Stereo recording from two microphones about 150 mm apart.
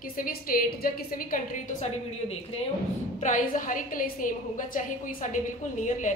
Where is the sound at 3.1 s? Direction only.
60° left (ahead or behind).